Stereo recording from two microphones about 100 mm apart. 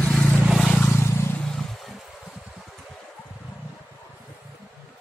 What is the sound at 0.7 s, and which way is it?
Vehicle, 25° left (ahead or behind).